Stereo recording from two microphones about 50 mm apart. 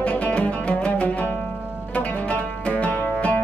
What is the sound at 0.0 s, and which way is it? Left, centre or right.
Music, left.